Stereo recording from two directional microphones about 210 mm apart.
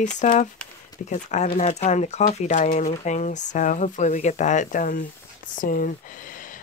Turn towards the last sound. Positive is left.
turn(degrees=40)  # may be behind; listen again after turning